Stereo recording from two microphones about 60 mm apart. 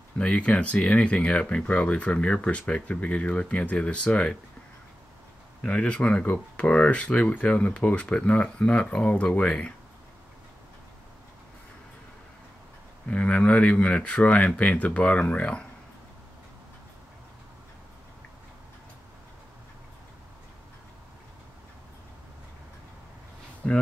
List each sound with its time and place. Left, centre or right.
0.2 s speech: centre
5.6 s speech: centre
13.0 s speech: left
23.6 s speech: centre